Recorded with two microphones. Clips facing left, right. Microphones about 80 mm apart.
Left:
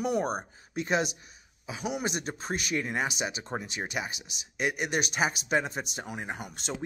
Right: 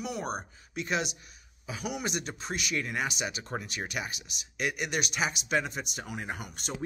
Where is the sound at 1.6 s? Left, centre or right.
Left.